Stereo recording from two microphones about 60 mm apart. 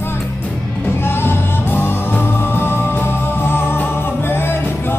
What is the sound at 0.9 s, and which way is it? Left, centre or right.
Music, left.